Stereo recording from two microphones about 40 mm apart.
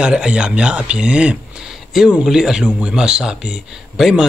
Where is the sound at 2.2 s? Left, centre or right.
Centre.